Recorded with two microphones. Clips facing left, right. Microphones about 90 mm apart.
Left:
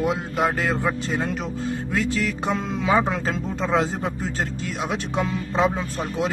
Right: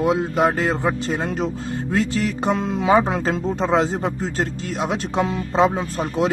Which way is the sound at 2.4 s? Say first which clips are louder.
Right 4 dB; 35° right (ahead or behind).